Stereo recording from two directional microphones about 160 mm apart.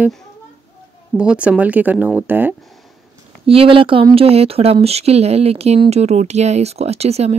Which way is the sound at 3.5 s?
35° right (ahead or behind).